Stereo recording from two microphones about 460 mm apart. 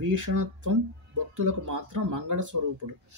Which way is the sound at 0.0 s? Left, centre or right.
Right.